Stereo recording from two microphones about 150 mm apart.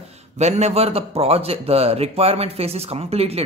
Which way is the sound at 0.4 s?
45° right (ahead or behind).